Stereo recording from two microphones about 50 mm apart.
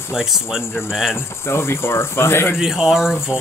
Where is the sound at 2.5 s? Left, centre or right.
Centre.